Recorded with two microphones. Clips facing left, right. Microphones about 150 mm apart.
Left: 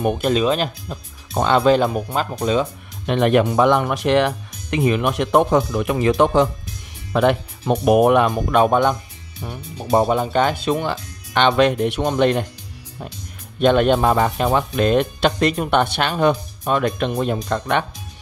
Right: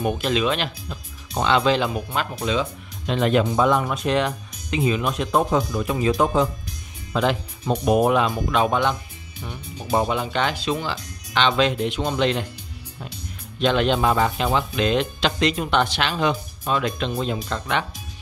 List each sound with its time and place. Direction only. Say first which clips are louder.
0.0 s speech: left 4 dB; 45° left (ahead or behind)
3.1 s speech: left 4 dB; 60° left (ahead or behind); by 6.5 s 75° left (ahead or behind)
7.1 s speech: left 5 dB; 55° left (ahead or behind)
13.6 s speech: left 5 dB; 50° left (ahead or behind)